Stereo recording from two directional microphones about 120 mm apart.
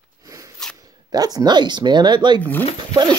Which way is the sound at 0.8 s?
30° right (ahead or behind).